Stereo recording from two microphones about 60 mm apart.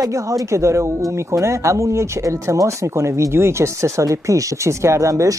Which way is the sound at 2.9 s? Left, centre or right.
Right.